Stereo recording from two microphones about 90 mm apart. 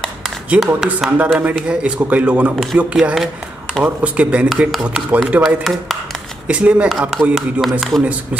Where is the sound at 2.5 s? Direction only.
Centre (ahead or behind).